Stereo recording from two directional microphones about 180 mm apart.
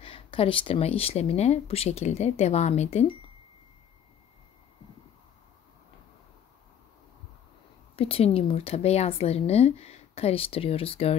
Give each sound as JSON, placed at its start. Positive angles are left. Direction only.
{"t": 0.0, "sound": "a woman's voice", "side_deg": 30}
{"t": 7.9, "sound": "a woman's voice", "side_deg": 35}